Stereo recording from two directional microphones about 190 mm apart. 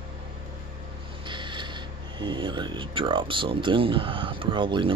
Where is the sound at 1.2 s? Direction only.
25° right (ahead or behind).